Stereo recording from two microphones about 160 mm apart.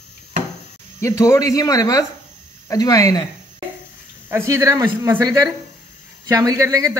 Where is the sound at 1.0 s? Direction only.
15° left (ahead or behind).